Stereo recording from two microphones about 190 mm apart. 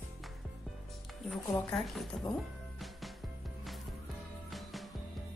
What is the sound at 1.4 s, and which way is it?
Speech, 5° left (ahead or behind).